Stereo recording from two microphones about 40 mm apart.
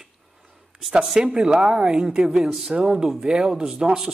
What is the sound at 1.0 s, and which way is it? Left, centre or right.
Speech, centre.